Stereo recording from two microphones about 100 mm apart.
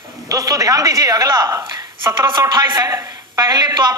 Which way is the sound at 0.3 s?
35° right (ahead or behind).